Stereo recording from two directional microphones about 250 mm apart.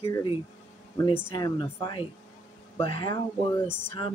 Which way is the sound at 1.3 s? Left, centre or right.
Centre.